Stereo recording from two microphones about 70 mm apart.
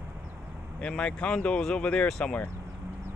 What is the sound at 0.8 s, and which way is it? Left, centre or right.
Speech, centre.